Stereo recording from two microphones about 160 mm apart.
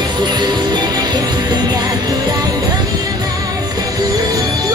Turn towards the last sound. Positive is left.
turn(degrees=-20)  # may be behind; listen again after turning